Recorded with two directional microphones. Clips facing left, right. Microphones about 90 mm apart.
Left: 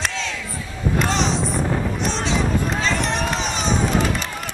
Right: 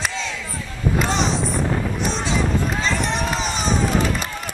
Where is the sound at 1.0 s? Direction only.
Centre (ahead or behind).